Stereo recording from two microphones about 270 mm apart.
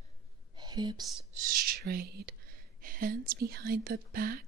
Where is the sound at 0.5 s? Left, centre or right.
Centre.